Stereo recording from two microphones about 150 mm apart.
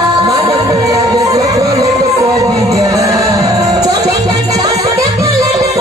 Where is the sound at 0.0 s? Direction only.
25° right (ahead or behind).